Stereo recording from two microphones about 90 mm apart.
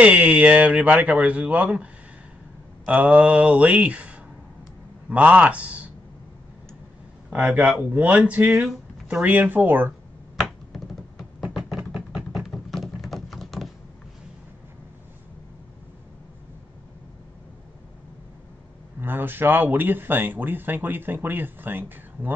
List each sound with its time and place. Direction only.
0.0 s speech: 15° right (ahead or behind)
3.1 s speech: 15° right (ahead or behind)
7.3 s speech: 15° right (ahead or behind)
8.5 s speech: 5° right (ahead or behind)
9.2 s speech: 20° right (ahead or behind)
10.7 s a sound: centre (ahead or behind)
12.4 s a sound: centre (ahead or behind)
18.9 s speech: 25° right (ahead or behind)